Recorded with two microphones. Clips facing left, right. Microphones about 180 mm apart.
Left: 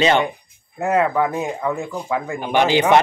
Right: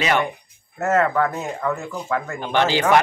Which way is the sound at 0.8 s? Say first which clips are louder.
Left 1 dB; 15° left (ahead or behind).